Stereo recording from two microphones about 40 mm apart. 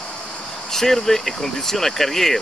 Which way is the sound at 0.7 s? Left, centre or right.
Centre.